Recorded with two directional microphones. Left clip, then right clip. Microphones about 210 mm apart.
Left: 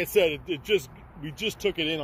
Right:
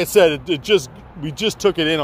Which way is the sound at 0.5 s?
15° right (ahead or behind).